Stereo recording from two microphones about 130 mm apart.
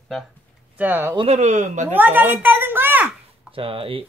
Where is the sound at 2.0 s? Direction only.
15° right (ahead or behind).